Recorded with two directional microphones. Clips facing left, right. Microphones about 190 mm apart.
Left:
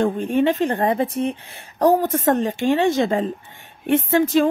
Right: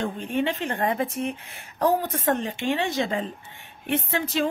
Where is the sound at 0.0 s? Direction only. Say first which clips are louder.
Left 8 dB; 45° left (ahead or behind).